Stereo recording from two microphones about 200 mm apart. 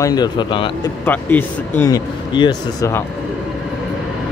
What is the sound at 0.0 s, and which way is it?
Speech, 20° left (ahead or behind).